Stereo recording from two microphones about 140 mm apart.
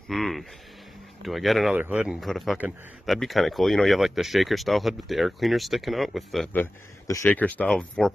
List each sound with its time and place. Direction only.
0.1 s speech: centre (ahead or behind)
6.5 s a man's voice: 20° left (ahead or behind)